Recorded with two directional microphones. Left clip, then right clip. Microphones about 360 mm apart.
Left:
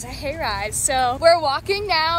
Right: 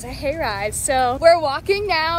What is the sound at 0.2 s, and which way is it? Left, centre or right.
A woman's voice, centre.